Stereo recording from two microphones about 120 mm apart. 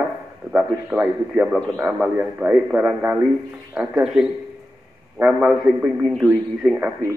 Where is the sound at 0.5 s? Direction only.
15° right (ahead or behind).